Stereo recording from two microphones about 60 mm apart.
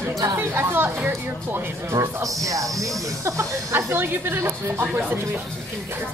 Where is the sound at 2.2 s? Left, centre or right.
Right.